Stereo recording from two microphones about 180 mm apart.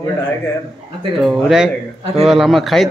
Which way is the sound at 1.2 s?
Centre (ahead or behind).